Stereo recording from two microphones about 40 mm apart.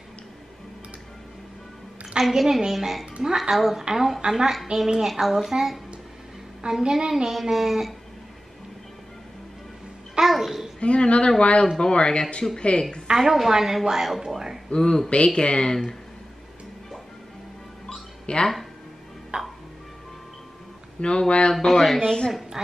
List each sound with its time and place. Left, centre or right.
2.1 s a woman's voice: centre
10.2 s babbling: centre
10.8 s speech: left
13.1 s a woman's voice: centre
14.7 s speech: centre
18.2 s speech: left
19.3 s music: right
21.0 s speech: left
21.5 s speech: centre
22.0 s speech: centre